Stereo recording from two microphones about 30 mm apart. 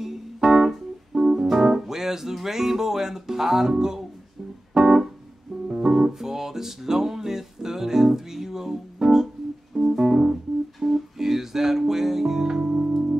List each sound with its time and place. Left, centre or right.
0.0 s organ: centre
2.3 s music: centre
5.7 s music: right
5.9 s music: centre
10.8 s music: centre